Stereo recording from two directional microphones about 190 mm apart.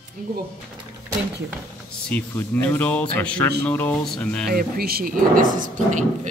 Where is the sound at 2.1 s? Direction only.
10° left (ahead or behind).